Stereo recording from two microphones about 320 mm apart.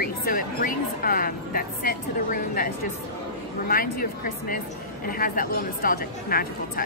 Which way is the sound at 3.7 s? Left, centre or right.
Left.